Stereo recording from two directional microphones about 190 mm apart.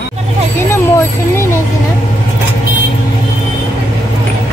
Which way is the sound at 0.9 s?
15° left (ahead or behind).